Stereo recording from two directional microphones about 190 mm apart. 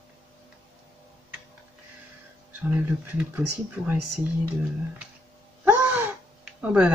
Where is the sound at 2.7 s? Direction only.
10° right (ahead or behind).